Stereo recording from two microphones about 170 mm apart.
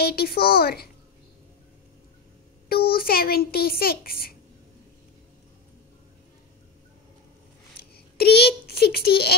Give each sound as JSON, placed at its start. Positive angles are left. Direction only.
{"t": 0.0, "sound": "a child's voice", "side_deg": 65}
{"t": 2.7, "sound": "a child's voice", "side_deg": 60}
{"t": 7.9, "sound": "a child's voice", "side_deg": 70}